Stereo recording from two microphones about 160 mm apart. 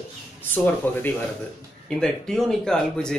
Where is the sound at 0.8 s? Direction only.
10° left (ahead or behind).